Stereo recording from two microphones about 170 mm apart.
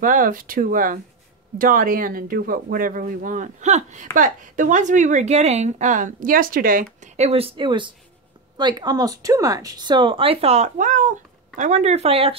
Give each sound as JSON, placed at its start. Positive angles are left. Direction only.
{"t": 0.0, "sound": "speech", "side_deg": -50}